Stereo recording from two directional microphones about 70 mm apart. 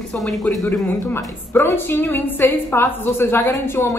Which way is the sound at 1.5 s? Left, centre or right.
Left.